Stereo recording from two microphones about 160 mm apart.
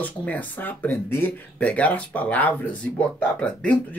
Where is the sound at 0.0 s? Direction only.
10° left (ahead or behind).